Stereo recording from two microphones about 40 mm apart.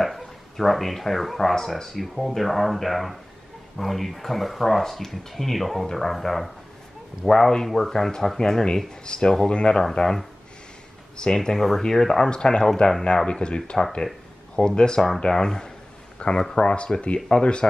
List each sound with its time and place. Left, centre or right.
0.0 s speech: centre; by 9.8 s left
9.9 s speech: centre
12.3 s speech: left
14.6 s speech: centre